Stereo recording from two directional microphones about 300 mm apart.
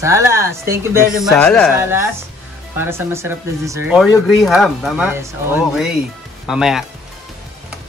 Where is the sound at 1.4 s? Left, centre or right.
Centre.